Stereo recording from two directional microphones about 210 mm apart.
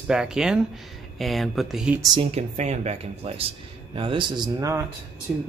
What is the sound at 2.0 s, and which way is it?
Speech, 20° right (ahead or behind).